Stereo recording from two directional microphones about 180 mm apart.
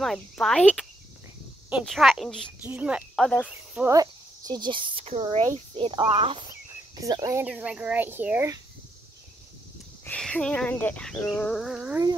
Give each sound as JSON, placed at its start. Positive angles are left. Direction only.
{"t": 0.0, "sound": "speech", "side_deg": 0}
{"t": 2.6, "sound": "speech", "side_deg": -10}
{"t": 3.3, "sound": "insect", "side_deg": 5}
{"t": 3.7, "sound": "speech", "side_deg": -15}
{"t": 7.0, "sound": "speech", "side_deg": -20}
{"t": 7.4, "sound": "speech", "side_deg": -5}
{"t": 10.0, "sound": "speech", "side_deg": 5}